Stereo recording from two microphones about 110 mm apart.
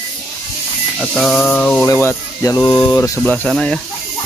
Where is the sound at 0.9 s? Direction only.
5° left (ahead or behind).